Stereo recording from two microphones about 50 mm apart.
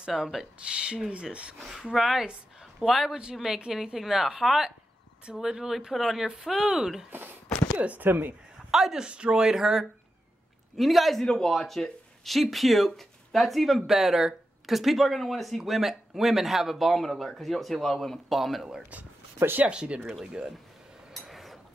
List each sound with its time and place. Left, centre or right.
0.1 s speech: centre
1.6 s a woman's voice: centre
2.6 s a sound: centre
3.1 s a woman's voice: centre
7.1 s speech: right
7.7 s chopping: right
8.0 s speech: right
8.5 s a sound: centre
9.0 s a woman's voice: centre
11.2 s speech: centre
18.8 s speech: right
21.1 s a sound: centre